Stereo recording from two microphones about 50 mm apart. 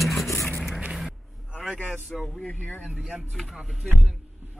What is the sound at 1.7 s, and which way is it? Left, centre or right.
Speech, right.